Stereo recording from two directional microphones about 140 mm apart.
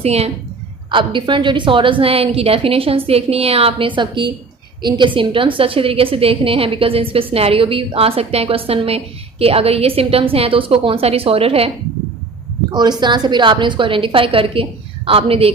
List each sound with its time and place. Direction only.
0.0 s a woman's voice: 45° right (ahead or behind)
0.9 s a woman's voice: 35° right (ahead or behind)
12.7 s a woman's voice: 30° right (ahead or behind)